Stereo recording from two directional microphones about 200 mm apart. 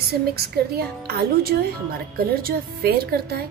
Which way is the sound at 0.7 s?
50° right (ahead or behind).